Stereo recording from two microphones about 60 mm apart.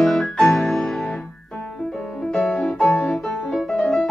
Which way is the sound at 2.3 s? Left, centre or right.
Centre.